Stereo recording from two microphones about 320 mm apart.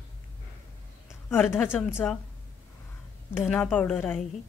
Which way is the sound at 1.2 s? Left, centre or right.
Centre.